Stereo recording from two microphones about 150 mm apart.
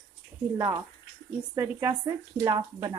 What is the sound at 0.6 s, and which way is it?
A woman's voice, 20° right (ahead or behind).